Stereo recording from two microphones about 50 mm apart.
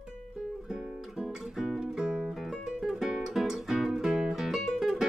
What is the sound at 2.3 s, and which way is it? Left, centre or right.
Music, centre.